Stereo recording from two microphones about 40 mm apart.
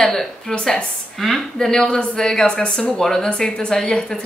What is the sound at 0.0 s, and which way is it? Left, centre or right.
Speech, centre.